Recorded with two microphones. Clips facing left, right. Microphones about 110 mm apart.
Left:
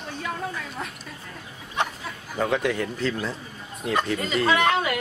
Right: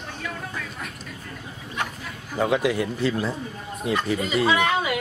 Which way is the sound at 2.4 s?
5° right (ahead or behind).